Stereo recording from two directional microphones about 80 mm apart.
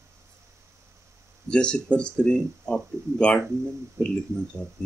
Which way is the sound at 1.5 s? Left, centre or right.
Centre.